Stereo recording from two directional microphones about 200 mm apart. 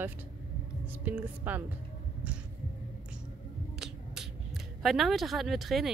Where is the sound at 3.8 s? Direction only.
Centre (ahead or behind).